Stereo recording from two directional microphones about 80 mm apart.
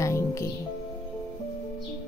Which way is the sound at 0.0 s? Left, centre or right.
Left.